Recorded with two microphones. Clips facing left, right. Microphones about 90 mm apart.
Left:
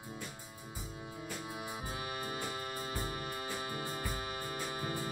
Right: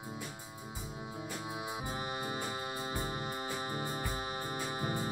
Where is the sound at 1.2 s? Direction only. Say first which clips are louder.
Right 1 dB; 20° right (ahead or behind).